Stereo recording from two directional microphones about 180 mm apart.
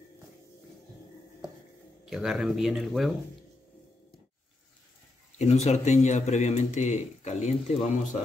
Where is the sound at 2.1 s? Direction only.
Centre (ahead or behind).